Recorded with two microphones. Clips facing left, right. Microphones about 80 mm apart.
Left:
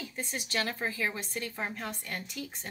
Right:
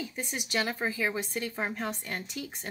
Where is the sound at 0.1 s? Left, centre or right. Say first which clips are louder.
Right 2 dB; centre.